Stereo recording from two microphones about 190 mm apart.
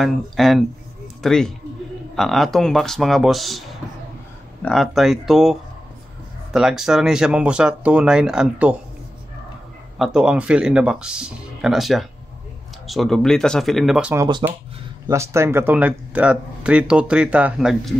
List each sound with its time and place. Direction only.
0.0 s speech: centre (ahead or behind)
4.6 s speech: centre (ahead or behind)
9.9 s speech: 5° right (ahead or behind)
14.1 s speech: 20° right (ahead or behind); by 17.9 s 5° right (ahead or behind)